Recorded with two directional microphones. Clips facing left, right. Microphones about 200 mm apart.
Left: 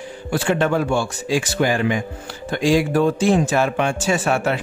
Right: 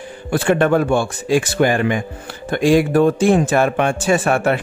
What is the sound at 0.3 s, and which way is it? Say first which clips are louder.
Speech: right 4 dB; 55° right (ahead or behind).